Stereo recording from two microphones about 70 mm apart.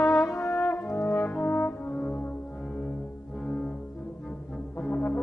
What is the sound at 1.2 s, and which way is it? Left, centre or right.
Brass instrument, left.